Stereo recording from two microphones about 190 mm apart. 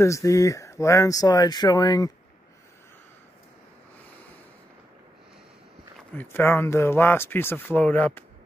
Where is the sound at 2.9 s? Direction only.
10° left (ahead or behind).